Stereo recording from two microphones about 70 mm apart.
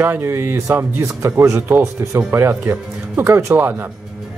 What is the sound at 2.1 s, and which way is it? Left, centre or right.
Speech, right.